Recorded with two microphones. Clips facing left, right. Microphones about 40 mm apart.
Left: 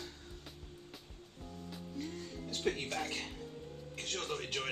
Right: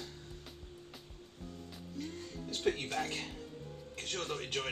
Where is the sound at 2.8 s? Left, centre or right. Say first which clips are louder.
Right 1 dB; centre.